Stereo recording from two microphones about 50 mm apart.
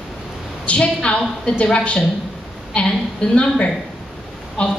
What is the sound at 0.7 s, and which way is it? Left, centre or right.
A woman's voice, left.